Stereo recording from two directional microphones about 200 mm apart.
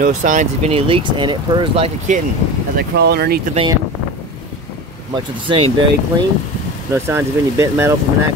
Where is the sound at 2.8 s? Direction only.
55° right (ahead or behind).